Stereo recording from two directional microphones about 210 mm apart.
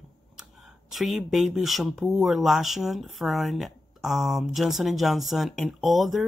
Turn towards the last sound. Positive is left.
turn(degrees=0)  # may be behind; listen again after turning